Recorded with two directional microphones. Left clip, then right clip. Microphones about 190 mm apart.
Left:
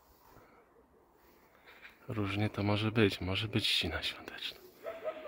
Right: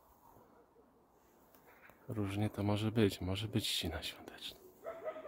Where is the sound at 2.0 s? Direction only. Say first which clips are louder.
Left 4 dB; 5° right (ahead or behind).